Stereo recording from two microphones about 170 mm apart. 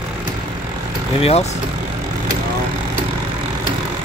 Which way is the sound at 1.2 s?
40° left (ahead or behind).